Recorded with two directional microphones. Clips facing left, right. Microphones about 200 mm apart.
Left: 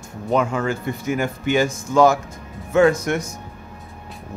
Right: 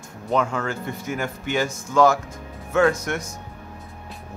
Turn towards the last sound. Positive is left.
turn(degrees=15)  # may be behind; listen again after turning